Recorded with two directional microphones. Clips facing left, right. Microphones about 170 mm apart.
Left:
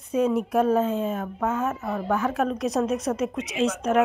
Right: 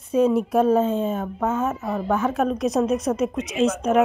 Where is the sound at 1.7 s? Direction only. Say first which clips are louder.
Right 2 dB; 10° right (ahead or behind).